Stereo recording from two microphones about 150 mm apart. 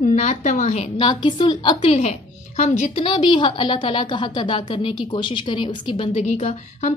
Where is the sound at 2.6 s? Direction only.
50° left (ahead or behind).